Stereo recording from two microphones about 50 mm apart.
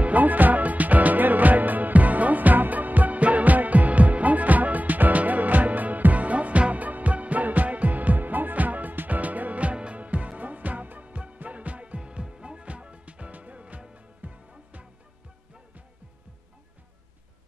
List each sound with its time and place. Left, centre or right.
0.0 s music: right